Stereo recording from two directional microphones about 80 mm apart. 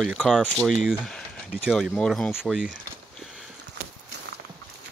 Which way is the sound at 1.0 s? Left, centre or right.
Centre.